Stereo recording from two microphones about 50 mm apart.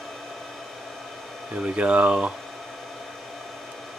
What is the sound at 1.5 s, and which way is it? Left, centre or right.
Speech, centre.